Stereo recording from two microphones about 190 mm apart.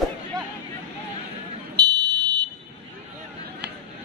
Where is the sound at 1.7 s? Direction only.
20° right (ahead or behind).